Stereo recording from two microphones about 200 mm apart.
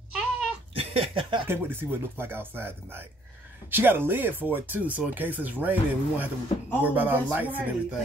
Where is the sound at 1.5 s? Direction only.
10° right (ahead or behind).